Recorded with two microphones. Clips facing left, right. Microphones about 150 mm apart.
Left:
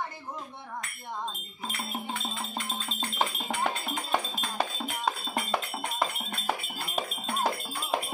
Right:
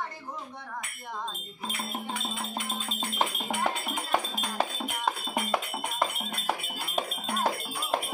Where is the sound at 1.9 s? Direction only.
10° left (ahead or behind).